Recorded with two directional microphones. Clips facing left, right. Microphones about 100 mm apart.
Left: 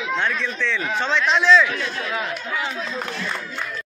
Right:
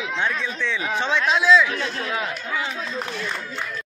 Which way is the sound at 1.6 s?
25° right (ahead or behind).